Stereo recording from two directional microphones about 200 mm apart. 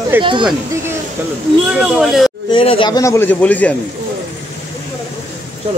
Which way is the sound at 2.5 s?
25° left (ahead or behind).